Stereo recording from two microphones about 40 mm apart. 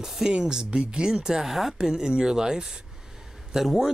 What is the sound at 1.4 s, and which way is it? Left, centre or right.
Speech, centre.